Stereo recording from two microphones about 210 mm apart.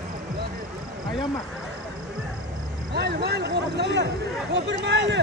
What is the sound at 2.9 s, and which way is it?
Speech, 50° right (ahead or behind).